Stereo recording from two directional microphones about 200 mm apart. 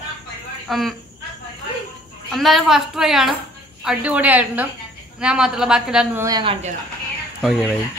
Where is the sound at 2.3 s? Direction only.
Centre (ahead or behind).